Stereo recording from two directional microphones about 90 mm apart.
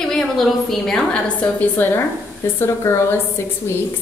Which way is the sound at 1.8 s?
20° left (ahead or behind).